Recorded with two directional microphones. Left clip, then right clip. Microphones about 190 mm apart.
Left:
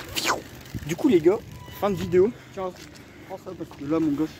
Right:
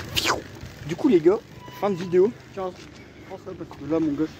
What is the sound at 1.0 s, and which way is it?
Speech, 10° left (ahead or behind).